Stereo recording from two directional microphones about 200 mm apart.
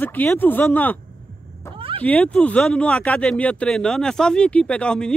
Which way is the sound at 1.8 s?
30° right (ahead or behind).